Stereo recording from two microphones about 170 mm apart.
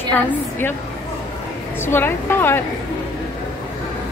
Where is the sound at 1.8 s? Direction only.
15° left (ahead or behind).